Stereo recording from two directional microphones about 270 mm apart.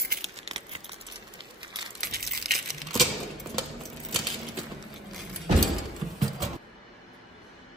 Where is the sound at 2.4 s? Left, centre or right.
Centre.